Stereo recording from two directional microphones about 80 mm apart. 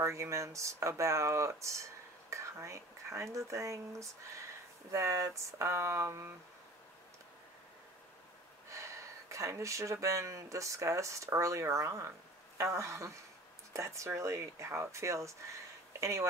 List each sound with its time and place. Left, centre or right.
0.0 s speech: right
8.6 s speech: right